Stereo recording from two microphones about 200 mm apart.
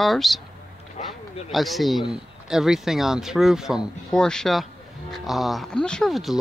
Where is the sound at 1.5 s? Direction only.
Centre (ahead or behind).